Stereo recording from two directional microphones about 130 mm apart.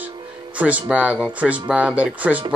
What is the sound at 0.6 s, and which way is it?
Speech, 10° right (ahead or behind).